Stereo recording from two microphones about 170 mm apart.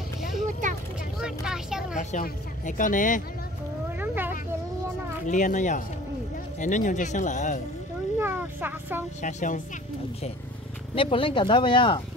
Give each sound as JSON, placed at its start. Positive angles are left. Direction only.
{"t": 0.6, "sound": "vehicle", "side_deg": -45}
{"t": 1.2, "sound": "vehicle", "side_deg": -5}
{"t": 2.0, "sound": "speech", "side_deg": 50}
{"t": 4.0, "sound": "a sound", "side_deg": -10}
{"t": 5.2, "sound": "speech", "side_deg": 45}
{"t": 8.2, "sound": "vehicle", "side_deg": -10}
{"t": 9.2, "sound": "speech", "side_deg": 50}
{"t": 11.0, "sound": "speech", "side_deg": 30}